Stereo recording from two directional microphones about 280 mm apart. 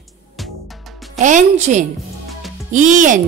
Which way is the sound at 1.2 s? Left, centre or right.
Right.